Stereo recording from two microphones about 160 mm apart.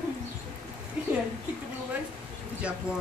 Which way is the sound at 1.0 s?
5° right (ahead or behind).